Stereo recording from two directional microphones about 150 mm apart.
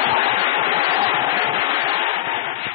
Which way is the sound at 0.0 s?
40° right (ahead or behind).